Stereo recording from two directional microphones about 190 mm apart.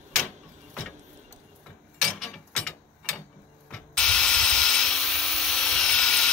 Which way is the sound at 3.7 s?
5° left (ahead or behind).